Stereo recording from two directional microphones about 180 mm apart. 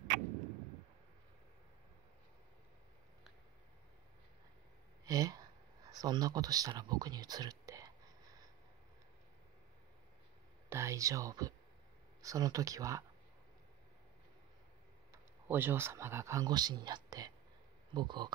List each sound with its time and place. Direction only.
5.0 s a sound: 20° right (ahead or behind)
10.7 s speech: 15° right (ahead or behind)
15.4 s speech: 10° right (ahead or behind)